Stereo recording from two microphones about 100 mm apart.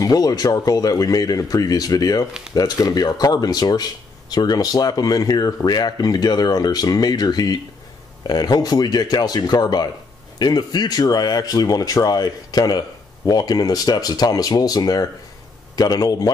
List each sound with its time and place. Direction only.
0.0 s speech: 40° left (ahead or behind)